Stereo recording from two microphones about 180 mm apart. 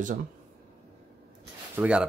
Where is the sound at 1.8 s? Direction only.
5° right (ahead or behind).